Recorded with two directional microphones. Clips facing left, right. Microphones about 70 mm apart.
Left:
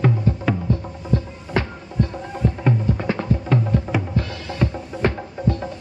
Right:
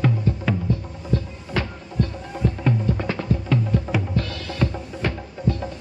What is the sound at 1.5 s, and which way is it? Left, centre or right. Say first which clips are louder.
Music: left 2 dB; left.